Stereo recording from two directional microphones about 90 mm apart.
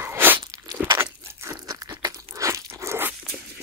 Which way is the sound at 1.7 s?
40° right (ahead or behind).